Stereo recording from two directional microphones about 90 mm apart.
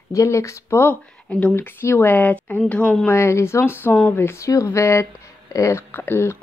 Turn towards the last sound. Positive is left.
turn(degrees=30)  # may be behind; listen again after turning